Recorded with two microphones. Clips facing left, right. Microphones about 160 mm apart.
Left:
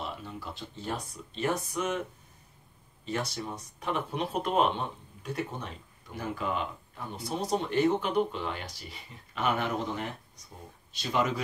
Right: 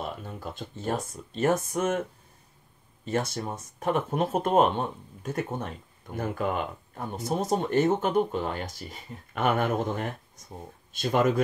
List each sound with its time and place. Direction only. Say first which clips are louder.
0.0 s speech: right 3 dB; 50° right (ahead or behind)
3.1 s speech: right 5 dB; 50° right (ahead or behind)